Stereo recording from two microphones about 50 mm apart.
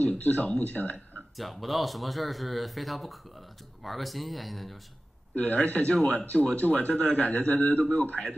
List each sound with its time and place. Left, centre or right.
0.0 s speech: left
1.3 s speech: centre
5.3 s speech: left